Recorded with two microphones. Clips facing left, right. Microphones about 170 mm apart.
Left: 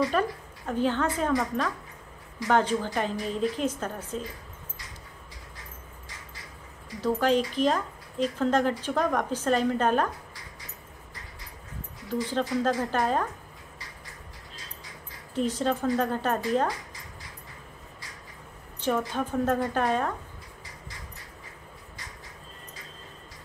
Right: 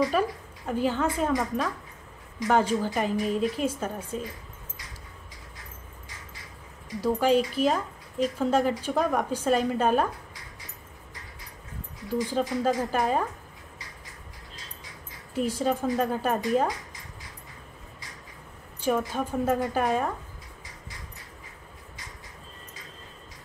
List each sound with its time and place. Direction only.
0.0 s speech: 10° right (ahead or behind)
7.2 s speech: 10° right (ahead or behind)
12.3 s speech: 10° right (ahead or behind)
15.3 s speech: 10° right (ahead or behind)
18.8 s speech: 10° right (ahead or behind)